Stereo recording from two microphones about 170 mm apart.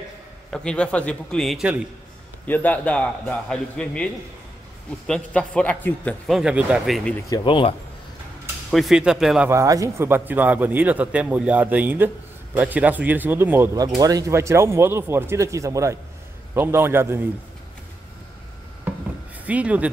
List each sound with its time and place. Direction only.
0.5 s a man's voice: 5° left (ahead or behind)
2.4 s a man's voice: 10° left (ahead or behind)
6.2 s a man's voice: 5° right (ahead or behind)
7.1 s speech: 15° left (ahead or behind)
8.6 s a man's voice: centre (ahead or behind)
9.5 s a man's voice: 20° right (ahead or behind)
19.4 s a man's voice: 10° right (ahead or behind)